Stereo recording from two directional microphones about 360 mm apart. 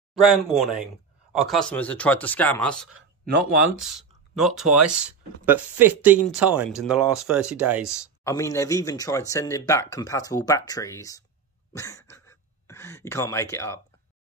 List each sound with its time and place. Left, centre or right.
0.1 s speech: centre
2.9 s speech: right
3.8 s speech: centre
7.9 s speech: centre
11.7 s a sound: centre